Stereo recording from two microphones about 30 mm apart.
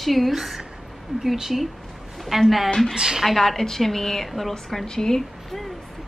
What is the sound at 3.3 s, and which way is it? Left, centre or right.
A woman's voice, centre.